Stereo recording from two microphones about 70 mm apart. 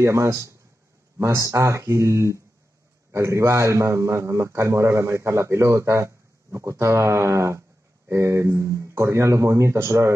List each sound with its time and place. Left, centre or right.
0.0 s a man's voice: right